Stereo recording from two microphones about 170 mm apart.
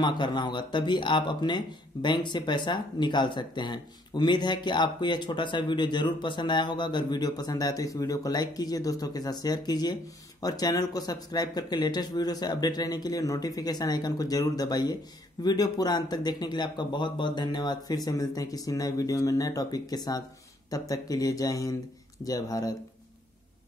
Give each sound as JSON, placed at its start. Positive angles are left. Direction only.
{"t": 0.0, "sound": "speech", "side_deg": 25}